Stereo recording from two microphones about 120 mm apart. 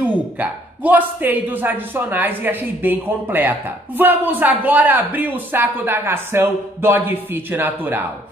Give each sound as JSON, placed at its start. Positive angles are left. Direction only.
{"t": 0.0, "sound": "speech", "side_deg": -15}